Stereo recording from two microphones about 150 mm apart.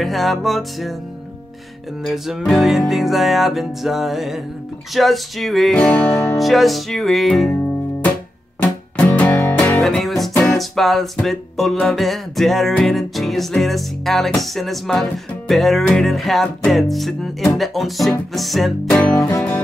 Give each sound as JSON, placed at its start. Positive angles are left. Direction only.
{"t": 0.0, "sound": "music", "side_deg": 0}
{"t": 2.2, "sound": "music", "side_deg": 0}
{"t": 8.9, "sound": "music", "side_deg": 10}
{"t": 18.9, "sound": "speech", "side_deg": 5}